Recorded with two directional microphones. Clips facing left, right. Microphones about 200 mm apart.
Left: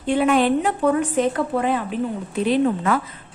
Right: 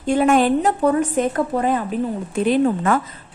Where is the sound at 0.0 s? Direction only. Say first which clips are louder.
Right 2 dB; 45° right (ahead or behind).